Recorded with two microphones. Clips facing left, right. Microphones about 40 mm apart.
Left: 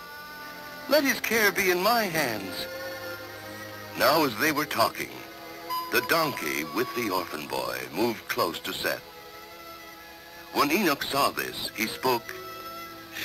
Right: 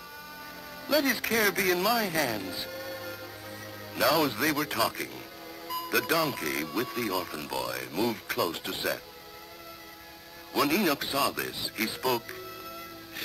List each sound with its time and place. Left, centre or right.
0.8 s speech: centre
2.7 s music: centre
4.4 s speech: centre
7.2 s speech: centre
10.5 s speech: centre